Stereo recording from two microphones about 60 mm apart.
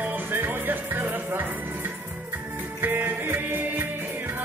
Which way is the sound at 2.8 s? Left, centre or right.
Right.